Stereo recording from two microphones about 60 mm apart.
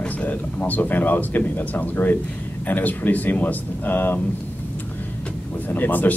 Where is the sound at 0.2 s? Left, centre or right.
Left.